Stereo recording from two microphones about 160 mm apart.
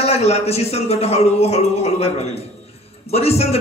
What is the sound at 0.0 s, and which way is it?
A man's voice, 40° left (ahead or behind).